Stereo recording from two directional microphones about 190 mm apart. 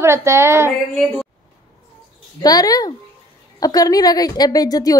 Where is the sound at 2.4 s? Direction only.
20° left (ahead or behind).